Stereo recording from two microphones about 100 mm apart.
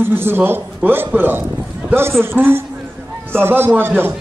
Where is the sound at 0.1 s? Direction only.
20° right (ahead or behind).